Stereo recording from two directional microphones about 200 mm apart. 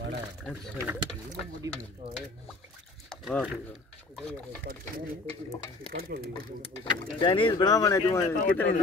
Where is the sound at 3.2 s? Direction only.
5° right (ahead or behind).